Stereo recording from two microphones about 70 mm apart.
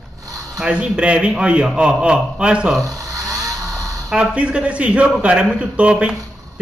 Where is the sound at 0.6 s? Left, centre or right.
Centre.